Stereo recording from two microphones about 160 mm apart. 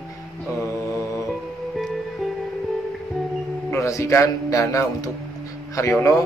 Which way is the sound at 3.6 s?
20° left (ahead or behind).